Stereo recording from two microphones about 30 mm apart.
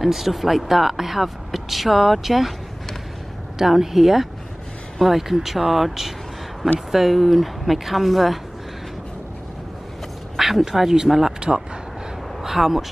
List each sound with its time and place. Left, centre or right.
0.0 s speech: centre
3.5 s speech: centre
10.3 s a sound: centre
10.6 s speech: centre
11.3 s speech: right
12.4 s speech: centre